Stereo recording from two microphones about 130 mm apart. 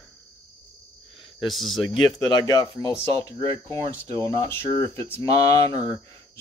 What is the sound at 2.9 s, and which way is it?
Speech, 20° left (ahead or behind).